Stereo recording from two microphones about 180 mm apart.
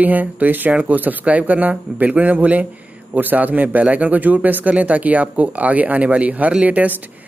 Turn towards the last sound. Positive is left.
turn(degrees=-10)  # may be behind; listen again after turning